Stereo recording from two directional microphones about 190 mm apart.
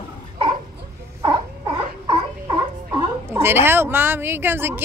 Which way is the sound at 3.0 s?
15° right (ahead or behind).